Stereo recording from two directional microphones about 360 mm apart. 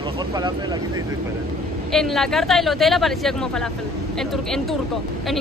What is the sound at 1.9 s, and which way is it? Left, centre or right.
Speech, centre.